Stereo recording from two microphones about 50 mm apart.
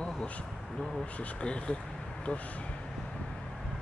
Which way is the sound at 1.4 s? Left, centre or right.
Left.